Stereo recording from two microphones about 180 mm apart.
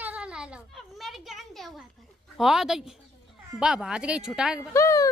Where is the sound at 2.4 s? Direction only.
Centre (ahead or behind).